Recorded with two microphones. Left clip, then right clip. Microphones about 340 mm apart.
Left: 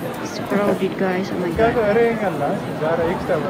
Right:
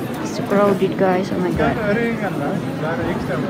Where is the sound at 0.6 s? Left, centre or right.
Centre.